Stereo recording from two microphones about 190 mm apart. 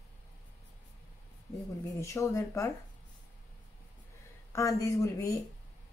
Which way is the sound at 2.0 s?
15° left (ahead or behind).